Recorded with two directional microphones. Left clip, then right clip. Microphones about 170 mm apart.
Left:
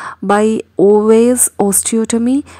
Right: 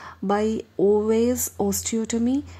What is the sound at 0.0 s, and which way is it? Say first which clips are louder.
Speech: left 11 dB; 30° left (ahead or behind).